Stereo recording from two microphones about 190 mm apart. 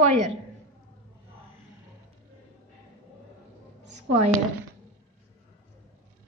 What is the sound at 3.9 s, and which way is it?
Speech, 40° right (ahead or behind).